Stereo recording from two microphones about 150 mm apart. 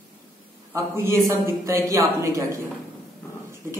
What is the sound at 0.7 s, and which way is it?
A man's voice, 15° right (ahead or behind).